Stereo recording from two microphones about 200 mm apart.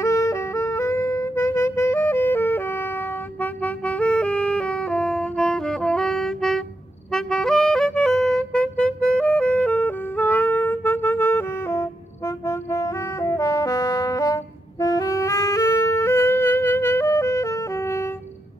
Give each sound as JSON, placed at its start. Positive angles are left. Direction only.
{"t": 0.0, "sound": "music", "side_deg": 15}